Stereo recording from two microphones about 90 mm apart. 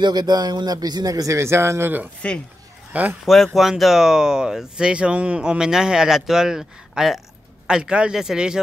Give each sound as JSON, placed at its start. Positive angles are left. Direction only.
{"t": 0.0, "sound": "a man's voice", "side_deg": -50}
{"t": 3.3, "sound": "speech", "side_deg": 0}